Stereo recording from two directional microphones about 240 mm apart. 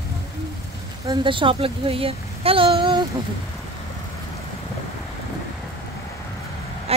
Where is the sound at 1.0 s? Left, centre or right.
Right.